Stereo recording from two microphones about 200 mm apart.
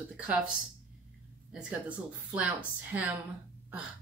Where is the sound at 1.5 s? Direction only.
5° right (ahead or behind).